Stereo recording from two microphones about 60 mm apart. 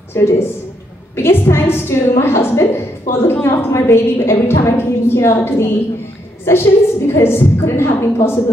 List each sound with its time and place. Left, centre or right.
0.1 s a woman's voice: left